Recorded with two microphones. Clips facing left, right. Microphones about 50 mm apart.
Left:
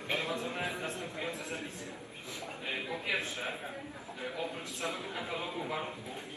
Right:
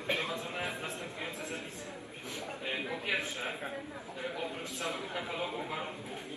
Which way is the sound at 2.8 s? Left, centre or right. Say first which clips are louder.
Even; right.